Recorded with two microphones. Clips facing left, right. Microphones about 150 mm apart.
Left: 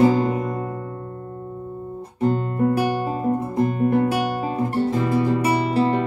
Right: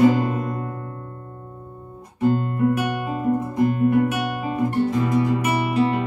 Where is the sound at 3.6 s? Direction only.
30° left (ahead or behind).